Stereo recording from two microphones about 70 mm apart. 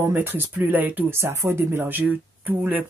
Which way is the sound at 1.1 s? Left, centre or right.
Right.